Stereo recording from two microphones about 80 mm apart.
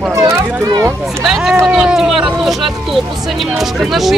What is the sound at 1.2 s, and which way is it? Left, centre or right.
Speech, centre.